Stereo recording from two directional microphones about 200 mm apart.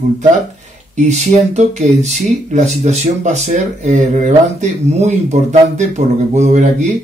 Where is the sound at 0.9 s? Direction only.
35° right (ahead or behind).